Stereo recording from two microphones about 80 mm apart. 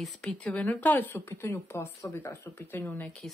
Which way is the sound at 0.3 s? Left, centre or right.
Centre.